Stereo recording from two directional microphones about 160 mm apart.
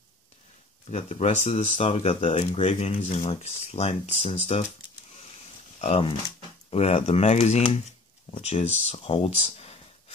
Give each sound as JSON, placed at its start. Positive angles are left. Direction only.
{"t": 0.8, "sound": "speech", "side_deg": 40}
{"t": 5.8, "sound": "speech", "side_deg": 35}